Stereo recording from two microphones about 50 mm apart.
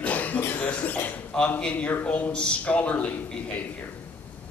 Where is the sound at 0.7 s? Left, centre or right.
Left.